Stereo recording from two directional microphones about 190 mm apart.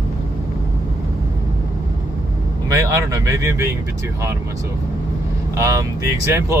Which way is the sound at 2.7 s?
15° right (ahead or behind).